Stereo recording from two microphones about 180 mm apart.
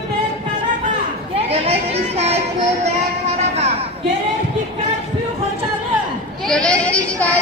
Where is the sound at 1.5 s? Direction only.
35° right (ahead or behind).